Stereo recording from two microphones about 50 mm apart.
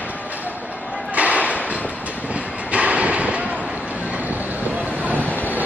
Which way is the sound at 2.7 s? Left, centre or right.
Right.